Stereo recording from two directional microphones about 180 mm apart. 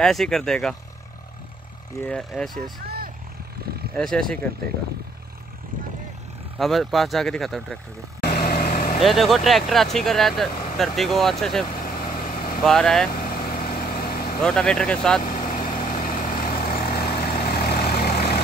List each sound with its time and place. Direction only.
0.0 s speech: centre (ahead or behind)
2.0 s speech: 5° left (ahead or behind)
3.9 s speech: 5° left (ahead or behind)
6.6 s speech: centre (ahead or behind)
8.2 s vehicle: 55° left (ahead or behind)
9.0 s speech: centre (ahead or behind)
11.7 s vehicle: 50° left (ahead or behind)
12.6 s speech: centre (ahead or behind)
13.1 s vehicle: 55° left (ahead or behind)
14.4 s speech: 5° left (ahead or behind)
15.2 s vehicle: 50° left (ahead or behind)